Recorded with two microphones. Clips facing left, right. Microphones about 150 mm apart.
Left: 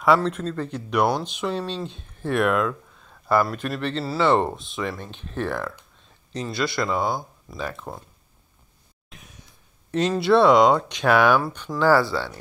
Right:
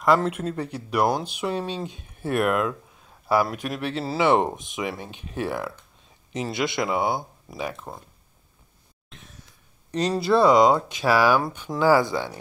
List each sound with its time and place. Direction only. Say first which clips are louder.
0.2 s speech: even; 10° right (ahead or behind)
4.0 s speech: even; 20° right (ahead or behind)
9.8 s speech: left 2 dB; centre (ahead or behind); by 12.4 s 15° right (ahead or behind)